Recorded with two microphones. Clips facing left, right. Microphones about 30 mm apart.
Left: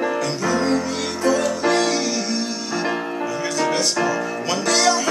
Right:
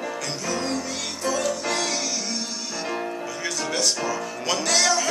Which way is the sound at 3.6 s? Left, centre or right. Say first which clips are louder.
Left 5 dB; centre.